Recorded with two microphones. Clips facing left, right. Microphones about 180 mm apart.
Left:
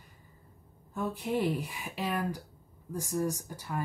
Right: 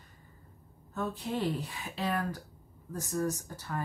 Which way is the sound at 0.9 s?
10° left (ahead or behind).